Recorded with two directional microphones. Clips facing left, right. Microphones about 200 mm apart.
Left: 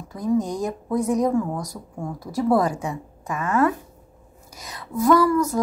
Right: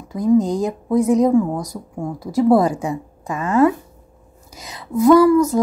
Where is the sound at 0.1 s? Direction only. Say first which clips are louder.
Right 7 dB; 25° right (ahead or behind).